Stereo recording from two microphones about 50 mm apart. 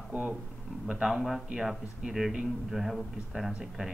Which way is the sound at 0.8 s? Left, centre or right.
Centre.